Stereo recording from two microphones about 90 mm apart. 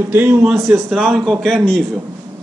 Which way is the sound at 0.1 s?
20° right (ahead or behind).